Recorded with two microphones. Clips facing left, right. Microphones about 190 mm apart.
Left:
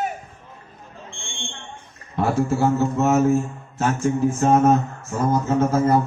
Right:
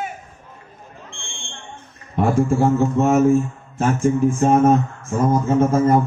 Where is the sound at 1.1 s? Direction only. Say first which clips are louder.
Left 1 dB; centre (ahead or behind).